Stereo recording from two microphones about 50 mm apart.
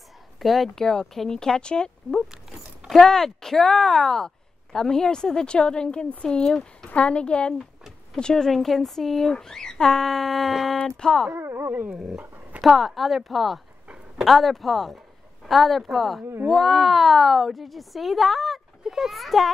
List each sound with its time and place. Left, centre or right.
0.4 s speech: centre
2.3 s keys jangling: centre
2.9 s speech: centre
6.9 s a woman's voice: left
8.5 s speech: centre
11.3 s speech: right
11.7 s dog: right
12.6 s speech: centre